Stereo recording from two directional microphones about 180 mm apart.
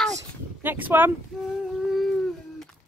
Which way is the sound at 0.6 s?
10° right (ahead or behind).